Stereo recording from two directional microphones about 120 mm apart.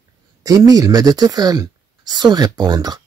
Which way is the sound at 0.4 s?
30° right (ahead or behind).